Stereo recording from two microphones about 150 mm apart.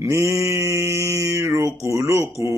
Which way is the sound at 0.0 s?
20° right (ahead or behind).